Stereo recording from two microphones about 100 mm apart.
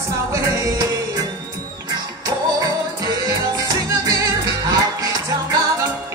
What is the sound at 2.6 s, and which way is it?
Music, 40° right (ahead or behind).